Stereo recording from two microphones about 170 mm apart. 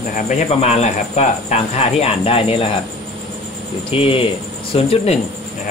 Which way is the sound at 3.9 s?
30° left (ahead or behind).